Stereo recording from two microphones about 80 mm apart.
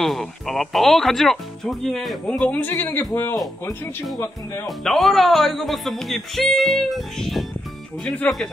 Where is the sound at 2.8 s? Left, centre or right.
Left.